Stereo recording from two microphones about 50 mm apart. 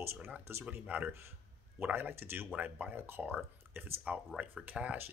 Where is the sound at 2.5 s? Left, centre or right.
Right.